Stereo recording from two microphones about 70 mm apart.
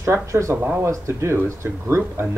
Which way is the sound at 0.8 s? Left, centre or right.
Right.